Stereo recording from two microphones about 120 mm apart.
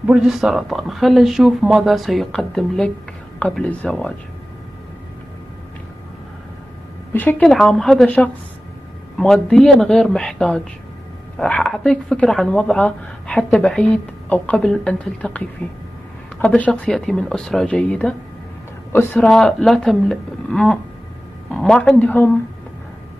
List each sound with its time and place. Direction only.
0.0 s speech: 5° right (ahead or behind); by 4.1 s 10° left (ahead or behind)
7.1 s speech: 15° left (ahead or behind)
18.9 s speech: 20° left (ahead or behind)
19.1 s speech: 5° left (ahead or behind)